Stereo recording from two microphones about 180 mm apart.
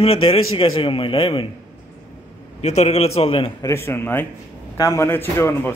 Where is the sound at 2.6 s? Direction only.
35° left (ahead or behind).